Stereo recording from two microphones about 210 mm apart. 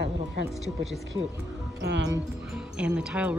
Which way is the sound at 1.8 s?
55° right (ahead or behind).